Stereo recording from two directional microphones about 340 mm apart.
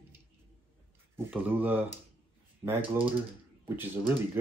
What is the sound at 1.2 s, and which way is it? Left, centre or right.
Speech, centre.